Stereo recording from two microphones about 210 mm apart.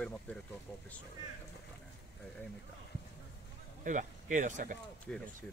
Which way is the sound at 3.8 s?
35° right (ahead or behind).